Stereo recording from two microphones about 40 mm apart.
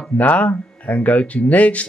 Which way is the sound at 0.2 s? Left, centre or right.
Left.